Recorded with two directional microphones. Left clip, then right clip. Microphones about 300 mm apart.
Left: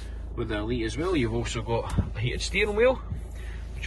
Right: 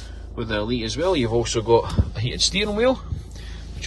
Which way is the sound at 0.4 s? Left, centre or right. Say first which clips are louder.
Right 5 dB; centre.